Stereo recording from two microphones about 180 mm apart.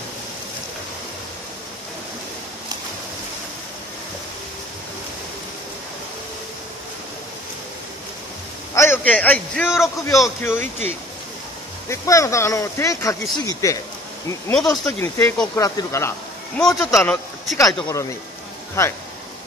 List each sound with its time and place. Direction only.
8.7 s a man's voice: 15° left (ahead or behind)
11.9 s speech: 15° left (ahead or behind)
14.5 s speech: centre (ahead or behind)
14.9 s speech: 10° left (ahead or behind)
17.6 s speech: 20° left (ahead or behind)